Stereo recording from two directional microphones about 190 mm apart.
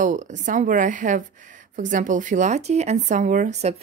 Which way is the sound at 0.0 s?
40° right (ahead or behind).